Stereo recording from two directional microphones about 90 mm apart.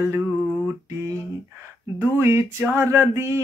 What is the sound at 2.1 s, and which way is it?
Speech, 30° right (ahead or behind).